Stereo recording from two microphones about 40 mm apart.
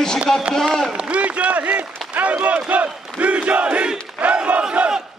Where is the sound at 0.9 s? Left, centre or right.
Right.